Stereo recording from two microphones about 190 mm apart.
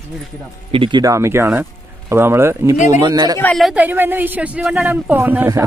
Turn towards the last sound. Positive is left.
turn(degrees=-15)  # may be behind; listen again after turning